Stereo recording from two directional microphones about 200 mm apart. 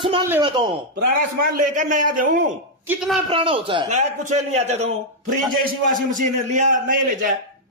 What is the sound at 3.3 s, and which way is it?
A man's voice, 25° right (ahead or behind).